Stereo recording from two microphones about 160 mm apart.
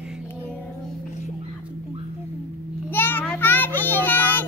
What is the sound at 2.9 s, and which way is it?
Child singing, 15° left (ahead or behind).